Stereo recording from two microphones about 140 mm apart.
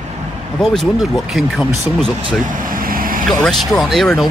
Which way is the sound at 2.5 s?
80° right.